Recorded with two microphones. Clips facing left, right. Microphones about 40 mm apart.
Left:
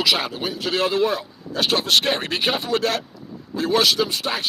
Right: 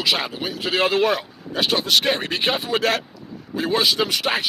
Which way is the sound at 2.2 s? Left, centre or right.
Centre.